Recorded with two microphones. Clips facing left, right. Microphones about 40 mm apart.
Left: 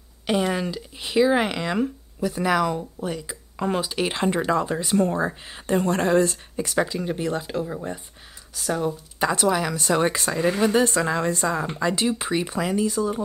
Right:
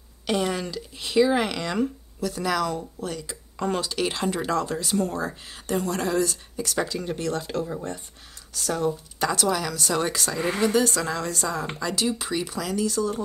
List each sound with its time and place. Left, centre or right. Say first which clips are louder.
0.3 s speech: left 2 dB; centre